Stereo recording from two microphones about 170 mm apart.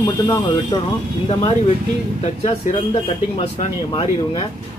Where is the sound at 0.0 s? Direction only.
25° left (ahead or behind).